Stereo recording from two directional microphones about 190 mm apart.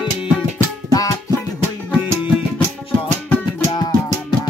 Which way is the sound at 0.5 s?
20° left (ahead or behind).